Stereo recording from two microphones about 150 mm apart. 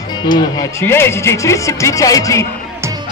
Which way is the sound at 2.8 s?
25° right (ahead or behind).